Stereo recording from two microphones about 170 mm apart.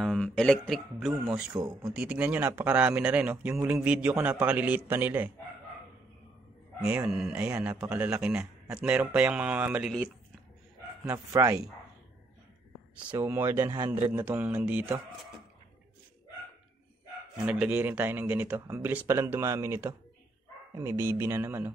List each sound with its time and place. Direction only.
0.0 s a man's voice: 5° left (ahead or behind)
1.5 s speech: 20° right (ahead or behind)
1.9 s a man's voice: 5° right (ahead or behind)
7.1 s a man's voice: 5° right (ahead or behind)
11.1 s a man's voice: 20° right (ahead or behind)
13.2 s a man's voice: 15° right (ahead or behind)
17.5 s a man's voice: 10° right (ahead or behind)